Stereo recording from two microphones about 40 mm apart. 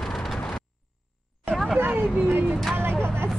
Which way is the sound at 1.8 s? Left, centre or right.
Right.